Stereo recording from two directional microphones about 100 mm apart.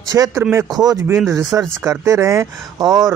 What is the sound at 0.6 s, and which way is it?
Speech, 40° right (ahead or behind).